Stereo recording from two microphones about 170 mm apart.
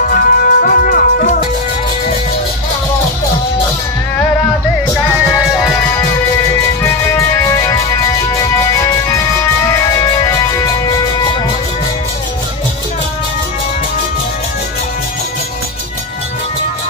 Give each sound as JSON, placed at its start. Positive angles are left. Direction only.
{"t": 0.1, "sound": "music", "side_deg": 55}
{"t": 5.3, "sound": "music", "side_deg": 0}
{"t": 6.8, "sound": "music", "side_deg": 15}